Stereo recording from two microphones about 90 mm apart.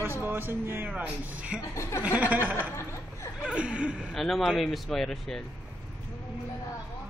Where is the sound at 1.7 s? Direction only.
35° left (ahead or behind).